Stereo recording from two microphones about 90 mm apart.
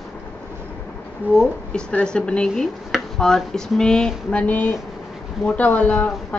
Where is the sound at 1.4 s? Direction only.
10° left (ahead or behind).